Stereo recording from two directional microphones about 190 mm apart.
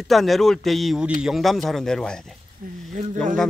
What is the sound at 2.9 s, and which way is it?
Speech, 40° right (ahead or behind).